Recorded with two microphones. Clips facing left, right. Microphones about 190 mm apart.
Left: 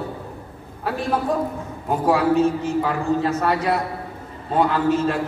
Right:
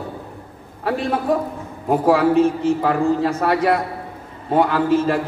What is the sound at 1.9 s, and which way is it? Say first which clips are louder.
A man's voice: right 3 dB; 60° right (ahead or behind).